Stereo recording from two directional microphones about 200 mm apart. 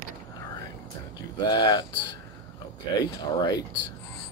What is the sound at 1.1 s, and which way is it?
Speech, 20° left (ahead or behind).